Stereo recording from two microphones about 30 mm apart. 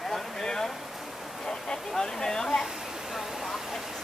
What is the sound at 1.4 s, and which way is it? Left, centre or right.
Speech, left.